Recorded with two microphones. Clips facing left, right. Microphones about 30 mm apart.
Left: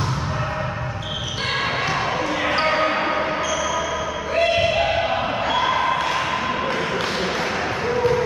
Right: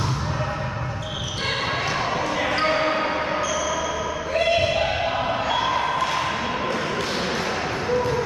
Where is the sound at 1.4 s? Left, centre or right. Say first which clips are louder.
Left 2 dB; centre.